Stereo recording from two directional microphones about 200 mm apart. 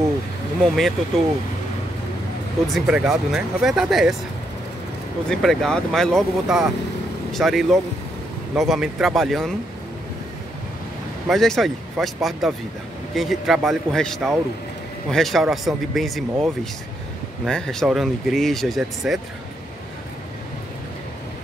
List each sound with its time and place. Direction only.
0.7 s speech: centre (ahead or behind)
2.7 s speech: centre (ahead or behind)
5.3 s speech: centre (ahead or behind)
11.2 s speech: centre (ahead or behind)
17.5 s speech: 5° left (ahead or behind)